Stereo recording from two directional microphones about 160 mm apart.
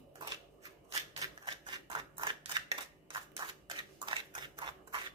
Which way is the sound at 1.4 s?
30° right (ahead or behind).